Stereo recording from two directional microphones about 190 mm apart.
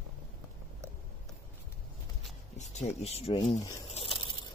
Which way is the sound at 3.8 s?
30° left (ahead or behind).